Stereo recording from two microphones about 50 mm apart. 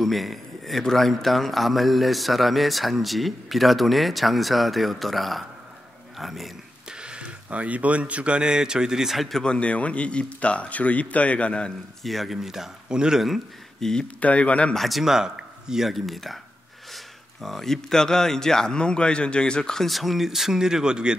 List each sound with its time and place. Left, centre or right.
0.0 s a man's voice: centre
6.9 s speech: centre
9.4 s speech: left
12.0 s a man's voice: centre
13.7 s speech: centre
14.0 s speech: left
14.7 s a man's voice: centre
19.9 s speech: centre